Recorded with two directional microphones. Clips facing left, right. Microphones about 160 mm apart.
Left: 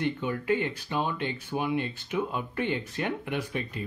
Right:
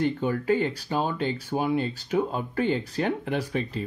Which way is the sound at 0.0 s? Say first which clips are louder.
Right 4 dB; 35° right (ahead or behind).